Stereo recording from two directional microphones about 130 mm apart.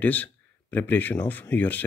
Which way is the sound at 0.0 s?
15° left (ahead or behind).